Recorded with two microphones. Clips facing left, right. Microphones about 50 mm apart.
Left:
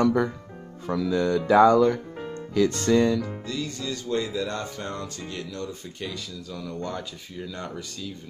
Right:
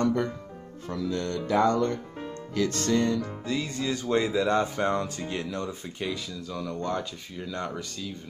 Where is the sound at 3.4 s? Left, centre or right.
Right; by 8.1 s centre.